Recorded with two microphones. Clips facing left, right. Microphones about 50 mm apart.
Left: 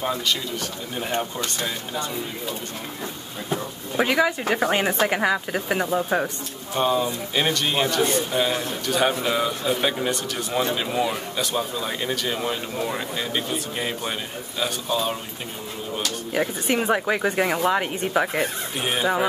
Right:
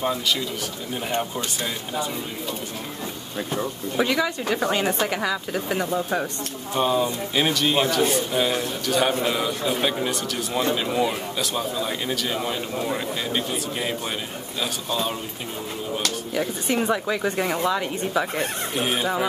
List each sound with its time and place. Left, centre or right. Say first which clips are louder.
0.0 s a man's voice: right 1 dB; centre
4.0 s speech: left 2 dB; left
6.7 s a man's voice: even; centre
16.3 s speech: left 2 dB; left
17.2 s speech: left 2 dB; left
17.6 s speech: left 2 dB; left
18.8 s a man's voice: right 1 dB; centre